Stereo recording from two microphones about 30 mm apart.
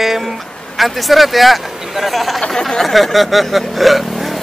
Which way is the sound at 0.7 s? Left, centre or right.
Centre.